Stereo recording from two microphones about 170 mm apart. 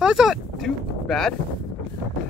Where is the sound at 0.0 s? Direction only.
5° right (ahead or behind).